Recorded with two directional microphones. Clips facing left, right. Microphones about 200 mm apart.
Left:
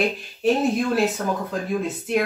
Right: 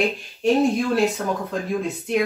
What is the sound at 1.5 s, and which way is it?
Speech, centre (ahead or behind).